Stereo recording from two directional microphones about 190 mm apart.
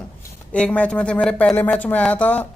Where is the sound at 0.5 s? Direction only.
5° left (ahead or behind).